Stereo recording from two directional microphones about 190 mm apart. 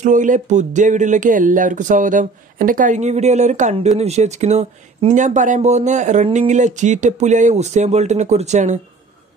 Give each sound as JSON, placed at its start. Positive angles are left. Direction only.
{"t": 0.0, "sound": "speech", "side_deg": -40}